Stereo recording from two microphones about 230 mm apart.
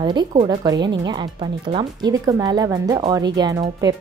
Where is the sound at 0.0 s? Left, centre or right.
Centre.